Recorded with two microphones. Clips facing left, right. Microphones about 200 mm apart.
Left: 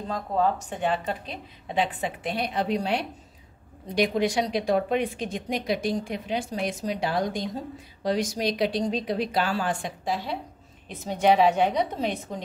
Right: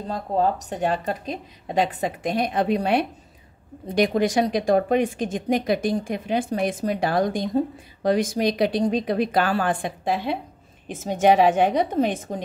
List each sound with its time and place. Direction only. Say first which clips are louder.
0.1 s speech: right 2 dB; 35° right (ahead or behind)